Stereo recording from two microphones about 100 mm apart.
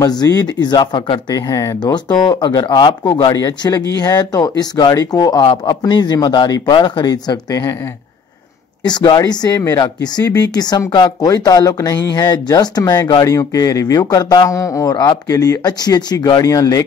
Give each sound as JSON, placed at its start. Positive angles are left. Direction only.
{"t": 0.0, "sound": "speech", "side_deg": 40}
{"t": 1.3, "sound": "speech", "side_deg": 35}
{"t": 1.8, "sound": "speech", "side_deg": 45}
{"t": 8.8, "sound": "speech", "side_deg": 45}